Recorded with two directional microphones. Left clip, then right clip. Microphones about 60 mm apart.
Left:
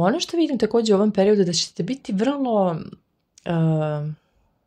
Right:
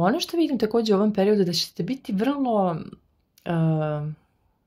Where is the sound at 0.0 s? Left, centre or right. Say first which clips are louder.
Left 2 dB; left.